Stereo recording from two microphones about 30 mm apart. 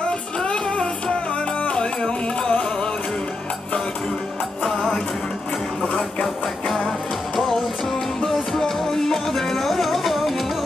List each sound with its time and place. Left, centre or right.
0.4 s music: left
4.6 s music: centre
8.3 s music: centre